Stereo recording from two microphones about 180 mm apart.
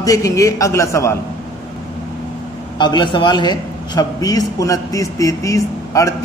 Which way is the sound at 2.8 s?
25° left (ahead or behind).